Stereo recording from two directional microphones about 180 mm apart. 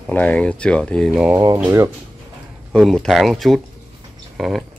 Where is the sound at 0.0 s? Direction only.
10° left (ahead or behind).